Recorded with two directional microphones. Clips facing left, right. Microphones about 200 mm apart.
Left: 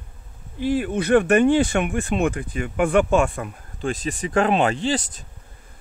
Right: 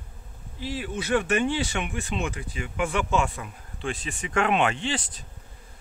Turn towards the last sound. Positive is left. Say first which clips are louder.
# left 7 dB
turn(degrees=40)  # may be behind; listen again after turning